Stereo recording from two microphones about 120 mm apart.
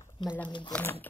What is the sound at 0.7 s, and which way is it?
Speech, 15° left (ahead or behind).